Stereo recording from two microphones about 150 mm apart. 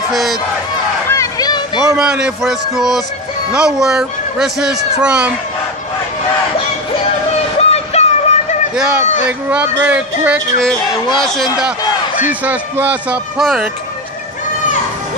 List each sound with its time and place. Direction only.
0.1 s speech: centre (ahead or behind)
1.1 s a sound: 25° left (ahead or behind)
2.0 s speech: 5° right (ahead or behind)
7.5 s a sound: 45° left (ahead or behind)
8.7 s speech: 5° right (ahead or behind)
9.0 s speech: 50° left (ahead or behind)
9.5 s a man's voice: 10° right (ahead or behind)
11.1 s speech: 5° left (ahead or behind)
12.3 s a man's voice: 10° right (ahead or behind)